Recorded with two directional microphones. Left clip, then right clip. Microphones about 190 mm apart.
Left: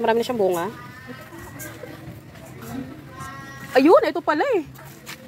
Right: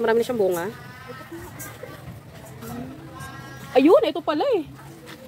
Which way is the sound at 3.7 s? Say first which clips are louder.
Left 1 dB; centre (ahead or behind).